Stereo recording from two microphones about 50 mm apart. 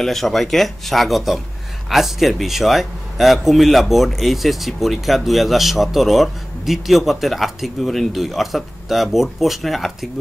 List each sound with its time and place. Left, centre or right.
0.0 s speech: centre